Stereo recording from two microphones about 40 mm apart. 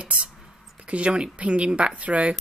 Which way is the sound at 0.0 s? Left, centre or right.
Right.